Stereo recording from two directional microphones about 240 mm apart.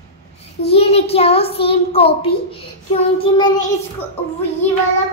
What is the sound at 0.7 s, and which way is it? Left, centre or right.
A child's voice, left.